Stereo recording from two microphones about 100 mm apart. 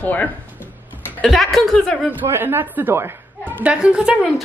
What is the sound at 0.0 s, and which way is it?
Speech, 15° left (ahead or behind).